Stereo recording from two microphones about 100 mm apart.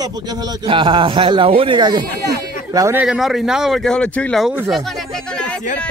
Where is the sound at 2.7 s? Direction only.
35° right (ahead or behind).